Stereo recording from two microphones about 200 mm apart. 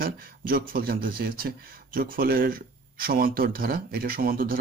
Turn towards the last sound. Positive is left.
turn(degrees=-45)  # may be behind; listen again after turning